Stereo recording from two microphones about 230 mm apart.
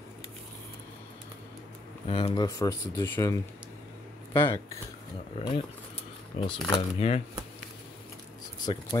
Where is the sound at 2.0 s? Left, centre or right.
Left.